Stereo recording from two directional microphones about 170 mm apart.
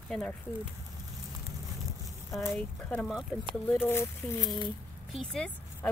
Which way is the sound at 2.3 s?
Centre (ahead or behind).